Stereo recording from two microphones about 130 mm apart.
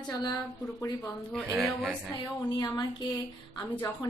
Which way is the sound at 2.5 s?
35° left (ahead or behind).